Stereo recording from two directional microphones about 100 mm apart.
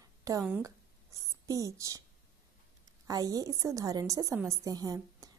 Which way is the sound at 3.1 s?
40° right (ahead or behind).